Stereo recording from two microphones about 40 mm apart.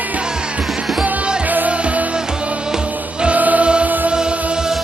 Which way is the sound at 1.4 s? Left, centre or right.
Right.